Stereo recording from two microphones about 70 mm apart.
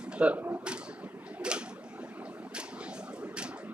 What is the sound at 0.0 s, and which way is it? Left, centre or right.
Speech, centre.